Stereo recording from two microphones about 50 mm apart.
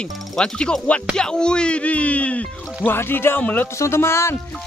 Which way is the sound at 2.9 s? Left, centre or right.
Left.